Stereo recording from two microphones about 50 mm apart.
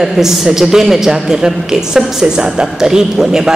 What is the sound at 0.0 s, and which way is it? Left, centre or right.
A man's voice, centre.